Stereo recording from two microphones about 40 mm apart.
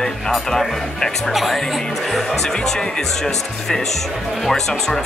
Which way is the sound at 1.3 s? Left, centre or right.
Centre.